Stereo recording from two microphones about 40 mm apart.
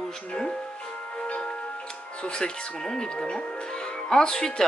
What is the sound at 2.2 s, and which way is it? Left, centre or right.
Speech, centre.